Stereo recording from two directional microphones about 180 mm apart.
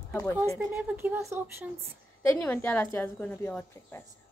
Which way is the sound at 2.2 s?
15° left (ahead or behind).